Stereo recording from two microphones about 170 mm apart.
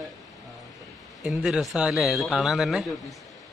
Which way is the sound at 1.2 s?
5° right (ahead or behind).